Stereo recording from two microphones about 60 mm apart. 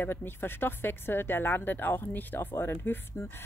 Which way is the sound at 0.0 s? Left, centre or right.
Left.